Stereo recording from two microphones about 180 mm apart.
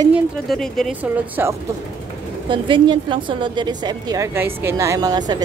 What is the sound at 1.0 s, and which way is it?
Speech, 10° right (ahead or behind).